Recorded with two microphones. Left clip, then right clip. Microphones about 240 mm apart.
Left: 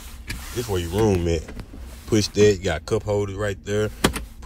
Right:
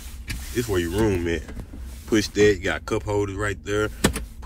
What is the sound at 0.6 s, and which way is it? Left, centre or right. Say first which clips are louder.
A man's voice: left 1 dB; centre.